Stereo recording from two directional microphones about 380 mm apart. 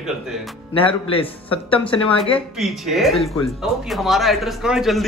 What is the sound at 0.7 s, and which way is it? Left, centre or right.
A man's voice, centre.